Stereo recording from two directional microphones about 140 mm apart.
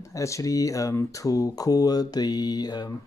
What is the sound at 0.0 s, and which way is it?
Speech, 20° left (ahead or behind).